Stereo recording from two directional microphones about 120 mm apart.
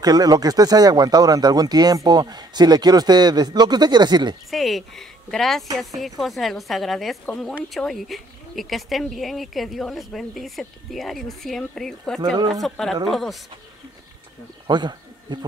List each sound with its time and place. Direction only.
0.0 s speech: 30° right (ahead or behind)
4.5 s speech: centre (ahead or behind)
14.7 s a sound: 35° right (ahead or behind)